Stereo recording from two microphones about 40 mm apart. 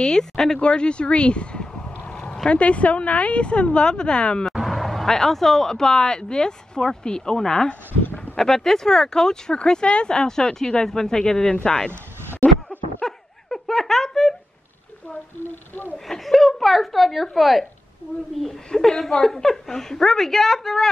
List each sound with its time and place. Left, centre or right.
0.0 s speech: centre
0.6 s a sound: left
2.5 s a woman's voice: left
4.6 s speech: centre; by 7.7 s left
8.0 s a sound: left
8.4 s speech: centre
12.6 s a sound: centre
15.4 s speech: left
16.1 s a woman's voice: centre
18.7 s speech: centre